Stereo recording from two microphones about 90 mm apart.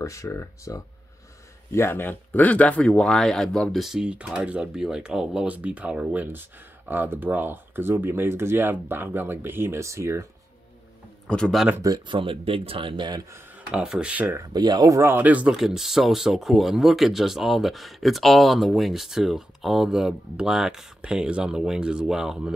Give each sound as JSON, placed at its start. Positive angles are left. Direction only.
{"t": 0.0, "sound": "speech", "side_deg": 35}
{"t": 3.8, "sound": "speech", "side_deg": -5}
{"t": 11.2, "sound": "speech", "side_deg": 10}
{"t": 12.1, "sound": "speech", "side_deg": -80}
{"t": 13.7, "sound": "speech", "side_deg": -10}
{"t": 14.4, "sound": "speech", "side_deg": -50}
{"t": 15.0, "sound": "speech", "side_deg": -25}